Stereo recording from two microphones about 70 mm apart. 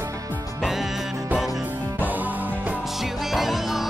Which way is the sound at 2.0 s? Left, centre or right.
Right.